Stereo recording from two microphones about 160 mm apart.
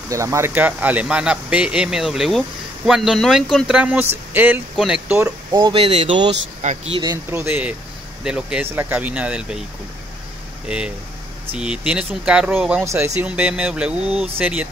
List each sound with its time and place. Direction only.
0.1 s speech: 20° right (ahead or behind)
5.6 s speech: 35° right (ahead or behind)
6.6 s speech: 45° right (ahead or behind)
7.0 s speech: 20° right (ahead or behind)
10.7 s speech: 5° right (ahead or behind)